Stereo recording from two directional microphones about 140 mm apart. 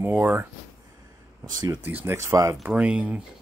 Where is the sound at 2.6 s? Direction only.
10° right (ahead or behind).